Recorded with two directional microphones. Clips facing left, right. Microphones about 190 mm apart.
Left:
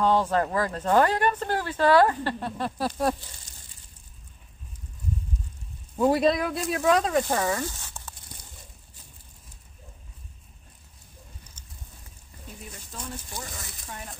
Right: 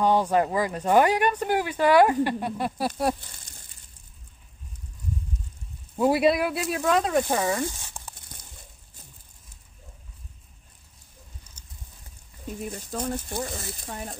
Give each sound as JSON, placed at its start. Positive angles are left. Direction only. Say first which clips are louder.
{"t": 0.0, "sound": "speech", "louder": "right 1 dB", "side_deg": -15}
{"t": 5.9, "sound": "speech", "louder": "right 1 dB", "side_deg": -10}
{"t": 7.2, "sound": "speech", "louder": "right 1 dB", "side_deg": -15}
{"t": 11.6, "sound": "a sound", "louder": "left 2 dB", "side_deg": -10}
{"t": 12.7, "sound": "speech", "louder": "right 8 dB", "side_deg": -45}
{"t": 13.6, "sound": "speech", "louder": "right 5 dB", "side_deg": -35}